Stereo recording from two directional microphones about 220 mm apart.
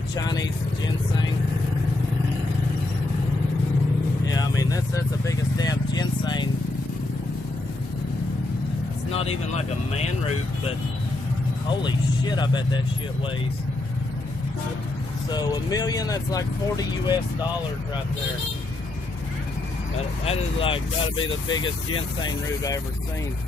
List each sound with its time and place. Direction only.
0.1 s speech: 15° left (ahead or behind)
4.3 s vehicle: 15° left (ahead or behind)
9.1 s speech: 30° left (ahead or behind)
11.8 s speech: 20° left (ahead or behind)
15.3 s speech: 20° left (ahead or behind)
20.2 s speech: 25° left (ahead or behind)
22.2 s speech: 15° left (ahead or behind)